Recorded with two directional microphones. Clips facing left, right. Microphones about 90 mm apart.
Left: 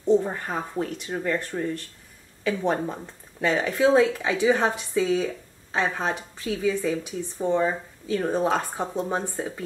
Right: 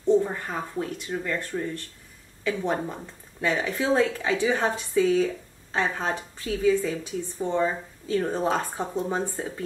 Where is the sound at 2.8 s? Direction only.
15° left (ahead or behind).